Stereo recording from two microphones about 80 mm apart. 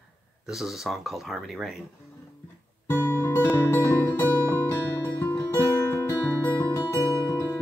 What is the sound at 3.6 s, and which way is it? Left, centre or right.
Music, left.